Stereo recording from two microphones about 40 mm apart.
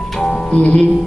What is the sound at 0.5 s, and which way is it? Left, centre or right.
Speech, left.